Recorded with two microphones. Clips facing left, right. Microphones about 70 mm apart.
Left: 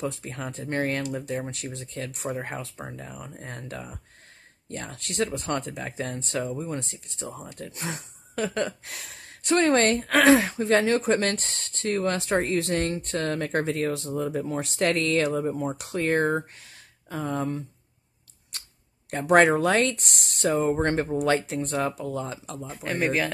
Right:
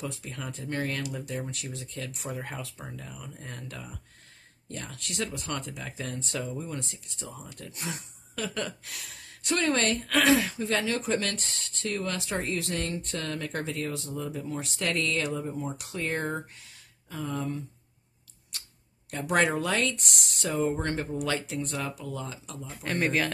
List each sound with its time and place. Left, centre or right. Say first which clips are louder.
0.0 s speech: left 5 dB; left
18.5 s a sound: left 2 dB; left
19.0 s speech: left 7 dB; left
22.8 s a man's voice: left 2 dB; centre